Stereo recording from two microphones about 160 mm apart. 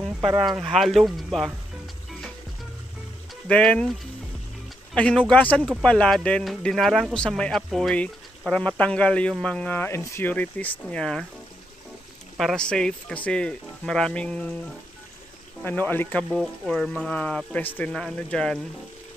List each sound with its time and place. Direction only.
0.2 s speech: 30° right (ahead or behind)
0.5 s speech: centre (ahead or behind)
3.4 s speech: 5° left (ahead or behind)
4.9 s speech: 5° left (ahead or behind)
12.4 s speech: 5° left (ahead or behind)
15.6 s speech: 10° left (ahead or behind)